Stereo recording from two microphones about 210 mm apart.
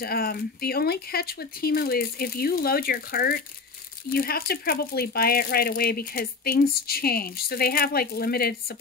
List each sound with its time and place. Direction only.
0.0 s speech: 45° left (ahead or behind)